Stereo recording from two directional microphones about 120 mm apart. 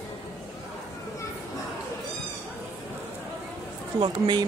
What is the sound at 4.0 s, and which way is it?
Speech, 40° right (ahead or behind).